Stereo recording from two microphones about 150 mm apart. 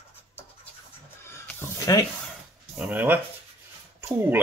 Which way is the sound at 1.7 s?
20° left (ahead or behind).